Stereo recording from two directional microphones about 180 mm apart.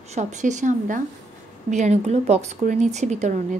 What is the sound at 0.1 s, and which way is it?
A woman's voice, 40° right (ahead or behind).